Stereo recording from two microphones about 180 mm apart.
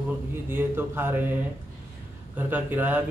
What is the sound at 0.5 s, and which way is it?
Speech, 10° right (ahead or behind).